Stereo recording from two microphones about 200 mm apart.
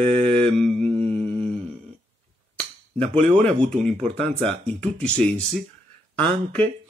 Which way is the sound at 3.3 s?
5° left (ahead or behind).